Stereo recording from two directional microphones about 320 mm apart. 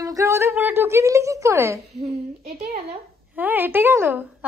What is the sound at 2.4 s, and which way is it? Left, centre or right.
Speech, right.